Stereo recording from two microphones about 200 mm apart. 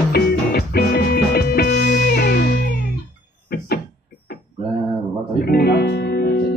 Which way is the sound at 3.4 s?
50° left (ahead or behind).